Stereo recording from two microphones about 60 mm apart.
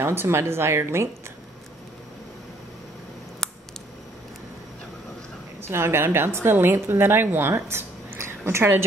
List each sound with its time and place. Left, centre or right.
0.0 s speech: right
5.6 s speech: right